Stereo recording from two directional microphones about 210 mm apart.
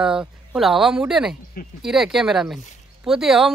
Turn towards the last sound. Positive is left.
turn(degrees=0)  # may be behind; listen again after turning